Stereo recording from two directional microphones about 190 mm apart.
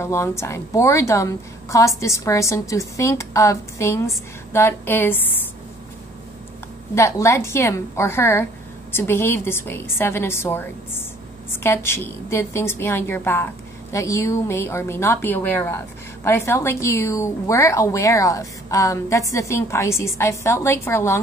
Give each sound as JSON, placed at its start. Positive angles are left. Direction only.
{"t": 0.0, "sound": "a woman's voice", "side_deg": 15}
{"t": 7.0, "sound": "a woman's voice", "side_deg": 15}